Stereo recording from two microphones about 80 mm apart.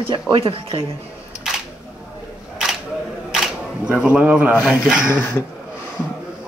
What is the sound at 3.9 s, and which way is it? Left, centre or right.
A man's voice, centre.